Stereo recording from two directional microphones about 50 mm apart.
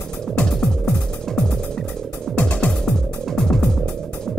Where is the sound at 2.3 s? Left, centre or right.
Left.